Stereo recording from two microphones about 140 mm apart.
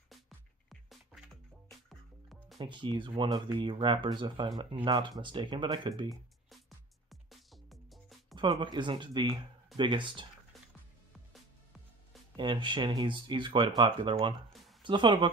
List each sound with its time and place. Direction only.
0.7 s music: centre (ahead or behind)
2.6 s speech: 35° right (ahead or behind)
7.1 s music: centre (ahead or behind)
8.4 s speech: 30° right (ahead or behind)
12.4 s speech: 35° right (ahead or behind)